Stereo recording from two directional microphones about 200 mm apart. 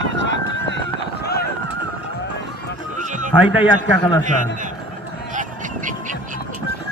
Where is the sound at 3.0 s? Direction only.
40° right (ahead or behind).